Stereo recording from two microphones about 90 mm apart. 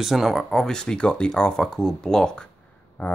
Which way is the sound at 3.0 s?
20° left (ahead or behind).